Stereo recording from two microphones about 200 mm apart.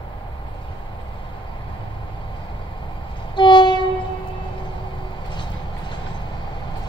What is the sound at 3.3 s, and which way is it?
Train, 25° left (ahead or behind).